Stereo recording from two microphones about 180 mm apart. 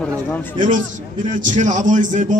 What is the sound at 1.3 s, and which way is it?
A man's voice, 45° right (ahead or behind).